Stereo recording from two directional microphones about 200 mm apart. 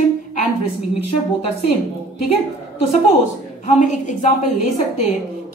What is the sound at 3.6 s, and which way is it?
Speech, 35° left (ahead or behind).